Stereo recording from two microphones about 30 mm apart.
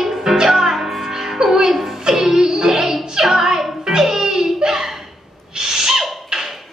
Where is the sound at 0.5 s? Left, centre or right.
Centre.